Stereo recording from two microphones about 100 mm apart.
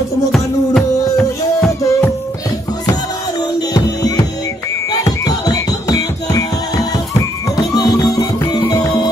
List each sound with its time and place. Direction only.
0.3 s music: 5° left (ahead or behind)
1.7 s music: 30° left (ahead or behind)
3.5 s music: 40° left (ahead or behind)